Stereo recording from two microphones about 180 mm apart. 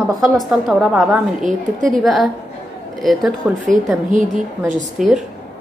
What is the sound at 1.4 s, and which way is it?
Speech, 45° right (ahead or behind).